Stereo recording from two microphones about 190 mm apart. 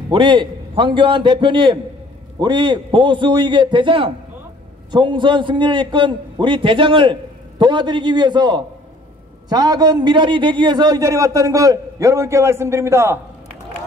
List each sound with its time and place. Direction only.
0.1 s a man's voice: 25° right (ahead or behind)